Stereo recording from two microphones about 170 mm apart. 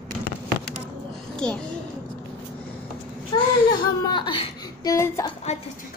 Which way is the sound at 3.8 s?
25° left (ahead or behind).